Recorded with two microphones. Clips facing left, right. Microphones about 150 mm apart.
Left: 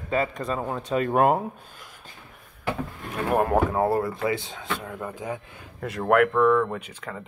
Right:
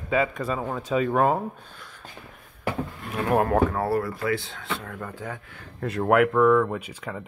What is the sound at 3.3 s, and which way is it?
Speech, 5° left (ahead or behind).